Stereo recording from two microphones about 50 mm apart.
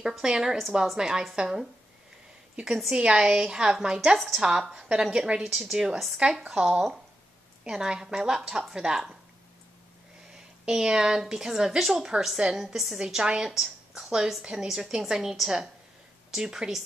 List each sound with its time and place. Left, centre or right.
0.0 s a woman's voice: centre
10.3 s a woman's voice: centre